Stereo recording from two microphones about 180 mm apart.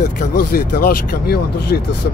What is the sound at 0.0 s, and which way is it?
Speech, 50° left (ahead or behind).